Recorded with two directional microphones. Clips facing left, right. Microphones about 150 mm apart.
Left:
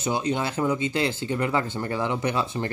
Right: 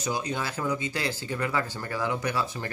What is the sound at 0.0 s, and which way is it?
Speech, 25° left (ahead or behind).